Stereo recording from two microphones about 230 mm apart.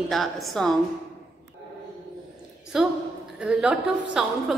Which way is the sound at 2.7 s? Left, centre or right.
Centre.